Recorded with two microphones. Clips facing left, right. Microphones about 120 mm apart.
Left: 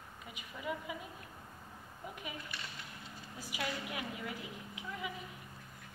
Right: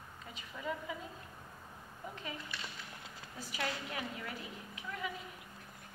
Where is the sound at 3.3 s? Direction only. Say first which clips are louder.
Even; 15° left (ahead or behind).